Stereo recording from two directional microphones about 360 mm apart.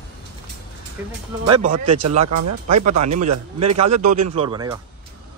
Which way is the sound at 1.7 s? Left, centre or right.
Right.